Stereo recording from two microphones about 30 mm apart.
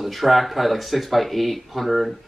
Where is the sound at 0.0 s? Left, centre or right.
Centre.